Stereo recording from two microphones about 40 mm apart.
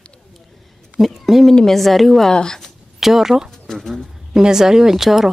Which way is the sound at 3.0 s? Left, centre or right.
Centre.